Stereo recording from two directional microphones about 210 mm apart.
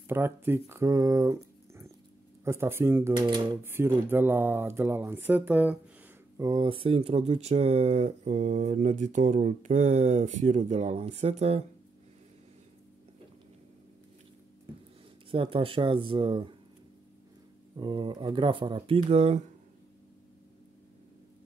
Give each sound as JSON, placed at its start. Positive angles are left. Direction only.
{"t": 0.1, "sound": "speech", "side_deg": -10}
{"t": 6.3, "sound": "speech", "side_deg": -20}
{"t": 15.3, "sound": "speech", "side_deg": -25}
{"t": 17.7, "sound": "speech", "side_deg": -25}